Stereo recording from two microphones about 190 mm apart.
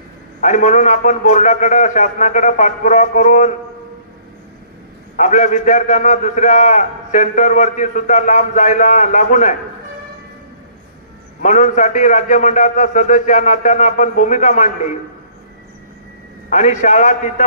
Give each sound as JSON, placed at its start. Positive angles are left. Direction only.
{"t": 0.4, "sound": "a man's voice", "side_deg": 40}
{"t": 5.1, "sound": "a man's voice", "side_deg": 40}
{"t": 11.4, "sound": "a man's voice", "side_deg": 40}
{"t": 16.4, "sound": "a man's voice", "side_deg": 40}